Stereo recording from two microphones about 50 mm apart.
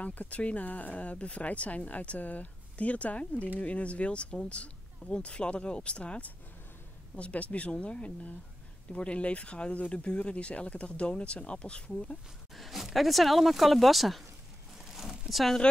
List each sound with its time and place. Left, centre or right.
0.0 s speech: left
12.5 s speech: centre
14.9 s a sound: centre